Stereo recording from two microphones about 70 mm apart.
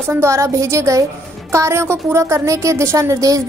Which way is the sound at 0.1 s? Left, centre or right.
Right.